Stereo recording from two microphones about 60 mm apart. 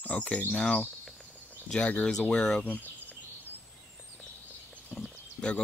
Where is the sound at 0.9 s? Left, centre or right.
Centre.